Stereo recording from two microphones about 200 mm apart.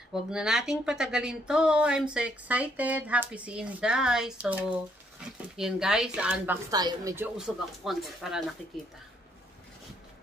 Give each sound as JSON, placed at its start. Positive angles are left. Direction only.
{"t": 0.1, "sound": "a woman's voice", "side_deg": -5}
{"t": 7.3, "sound": "speech", "side_deg": 0}